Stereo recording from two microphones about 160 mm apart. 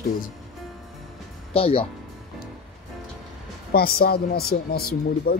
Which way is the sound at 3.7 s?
70° left (ahead or behind).